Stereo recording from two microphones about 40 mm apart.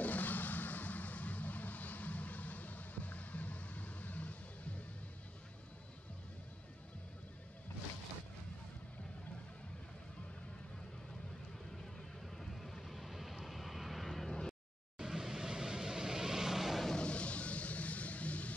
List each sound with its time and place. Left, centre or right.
0.0 s vehicle: left
11.8 s vehicle: centre
15.0 s vehicle: centre
16.9 s a sound: left